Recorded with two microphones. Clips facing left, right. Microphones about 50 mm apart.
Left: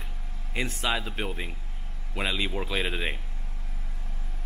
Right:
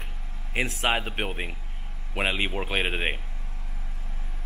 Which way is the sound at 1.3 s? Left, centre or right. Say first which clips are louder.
Right 2 dB; right.